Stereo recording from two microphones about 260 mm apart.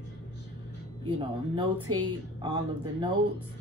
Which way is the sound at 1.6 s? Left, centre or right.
Centre.